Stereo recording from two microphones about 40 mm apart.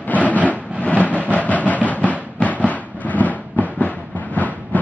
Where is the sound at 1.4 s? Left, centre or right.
Left.